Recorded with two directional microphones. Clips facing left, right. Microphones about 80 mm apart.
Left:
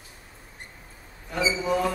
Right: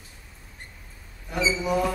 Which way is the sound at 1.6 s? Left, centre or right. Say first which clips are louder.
Even; centre.